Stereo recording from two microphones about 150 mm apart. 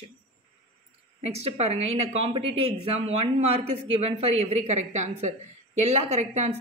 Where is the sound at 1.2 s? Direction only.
45° right (ahead or behind).